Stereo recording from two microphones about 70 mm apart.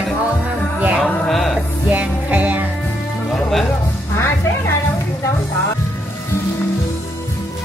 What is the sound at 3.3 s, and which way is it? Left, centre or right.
Music, centre.